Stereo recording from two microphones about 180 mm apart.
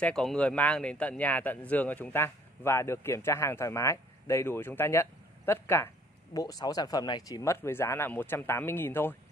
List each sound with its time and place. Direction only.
0.0 s a man's voice: 5° left (ahead or behind)